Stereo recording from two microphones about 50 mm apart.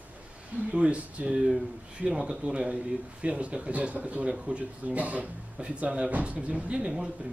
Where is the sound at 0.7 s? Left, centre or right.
Right.